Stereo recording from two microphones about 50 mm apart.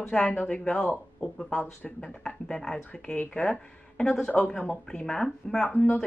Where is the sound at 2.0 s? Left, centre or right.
Centre.